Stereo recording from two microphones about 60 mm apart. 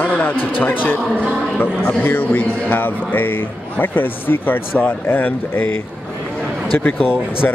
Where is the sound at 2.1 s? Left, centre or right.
Left.